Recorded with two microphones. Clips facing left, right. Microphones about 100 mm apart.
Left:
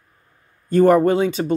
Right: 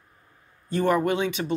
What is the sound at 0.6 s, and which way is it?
Speech, 45° left (ahead or behind).